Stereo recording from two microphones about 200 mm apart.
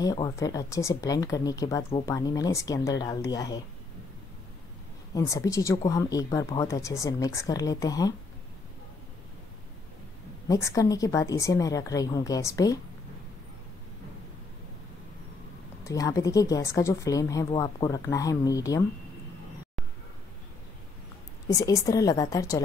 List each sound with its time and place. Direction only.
0.0 s speech: 20° left (ahead or behind)
5.1 s speech: 15° left (ahead or behind)
10.5 s speech: 15° left (ahead or behind)
15.8 s speech: 15° left (ahead or behind)
21.5 s speech: 15° left (ahead or behind)